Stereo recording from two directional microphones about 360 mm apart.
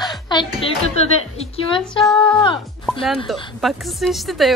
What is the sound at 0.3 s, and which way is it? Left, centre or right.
A woman's voice, centre.